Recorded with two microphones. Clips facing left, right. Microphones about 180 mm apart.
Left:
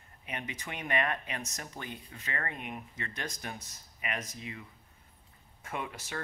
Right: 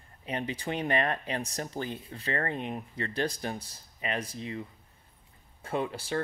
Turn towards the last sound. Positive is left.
turn(degrees=-30)  # may be behind; listen again after turning